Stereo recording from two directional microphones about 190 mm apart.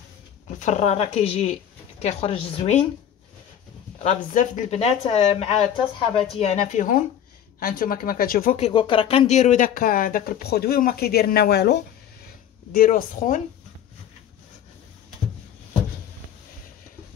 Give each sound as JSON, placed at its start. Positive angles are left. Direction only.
{"t": 0.6, "sound": "speech", "side_deg": 35}
{"t": 4.0, "sound": "speech", "side_deg": 40}
{"t": 12.7, "sound": "speech", "side_deg": 50}